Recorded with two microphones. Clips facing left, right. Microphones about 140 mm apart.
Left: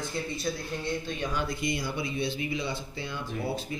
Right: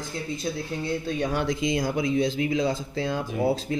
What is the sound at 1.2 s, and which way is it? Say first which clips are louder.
Speech: right 5 dB; 80° right.